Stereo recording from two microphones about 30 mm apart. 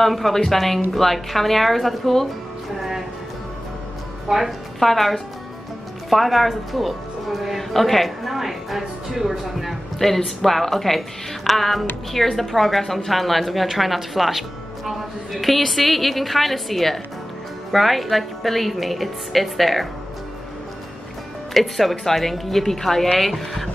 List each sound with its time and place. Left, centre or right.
0.0 s a woman's voice: centre
4.3 s a woman's voice: right
4.7 s a woman's voice: centre
9.9 s a woman's voice: centre
21.5 s a woman's voice: centre